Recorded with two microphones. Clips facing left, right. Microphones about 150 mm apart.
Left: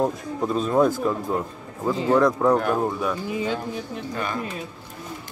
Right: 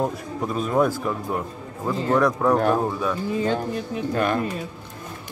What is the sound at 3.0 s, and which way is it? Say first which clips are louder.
Speech: right 2 dB; 10° left (ahead or behind).